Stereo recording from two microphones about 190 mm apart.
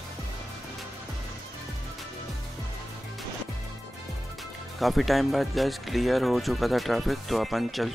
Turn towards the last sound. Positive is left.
turn(degrees=0)  # may be behind; listen again after turning